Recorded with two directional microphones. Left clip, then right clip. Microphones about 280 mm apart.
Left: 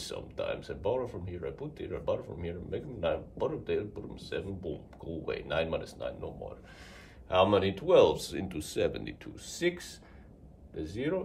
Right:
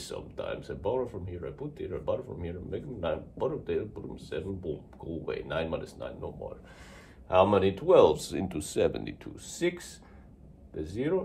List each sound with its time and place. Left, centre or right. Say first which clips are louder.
0.0 s speech: left 1 dB; centre
7.4 s speech: right 2 dB; centre